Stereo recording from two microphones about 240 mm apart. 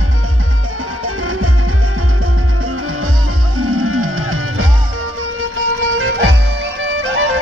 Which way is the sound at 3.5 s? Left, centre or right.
Right.